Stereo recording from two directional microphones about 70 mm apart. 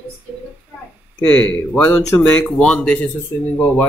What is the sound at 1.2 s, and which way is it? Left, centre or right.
Speech, centre.